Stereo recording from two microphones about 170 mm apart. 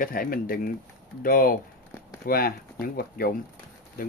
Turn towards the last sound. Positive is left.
turn(degrees=60)  # may be behind; listen again after turning